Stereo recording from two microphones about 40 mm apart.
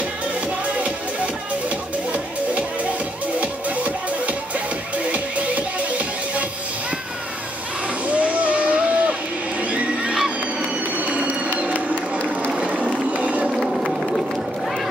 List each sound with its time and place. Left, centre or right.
0.7 s music: right
3.3 s music: right
8.1 s a sound: right
9.6 s neigh: right
11.0 s music: right
12.5 s a sound: right
12.9 s run: right
13.5 s vehicle: centre